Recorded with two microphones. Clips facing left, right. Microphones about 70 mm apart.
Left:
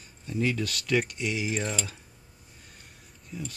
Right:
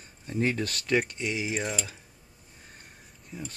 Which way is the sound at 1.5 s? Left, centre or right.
Centre.